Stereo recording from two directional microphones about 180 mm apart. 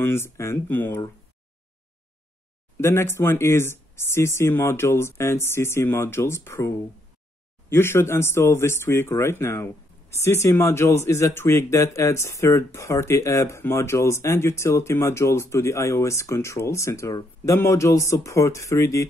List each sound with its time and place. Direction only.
0.0 s speech: 15° left (ahead or behind)
2.8 s speech: 15° left (ahead or behind)
7.7 s speech: 15° left (ahead or behind)